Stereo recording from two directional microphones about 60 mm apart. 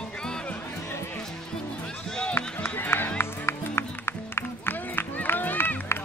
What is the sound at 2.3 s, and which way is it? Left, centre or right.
Music, left.